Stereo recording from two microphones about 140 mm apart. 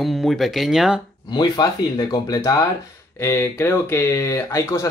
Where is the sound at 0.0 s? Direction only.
Centre (ahead or behind).